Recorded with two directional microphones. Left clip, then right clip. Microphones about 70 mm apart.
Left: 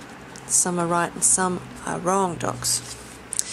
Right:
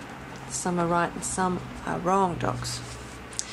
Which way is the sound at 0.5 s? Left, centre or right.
Left.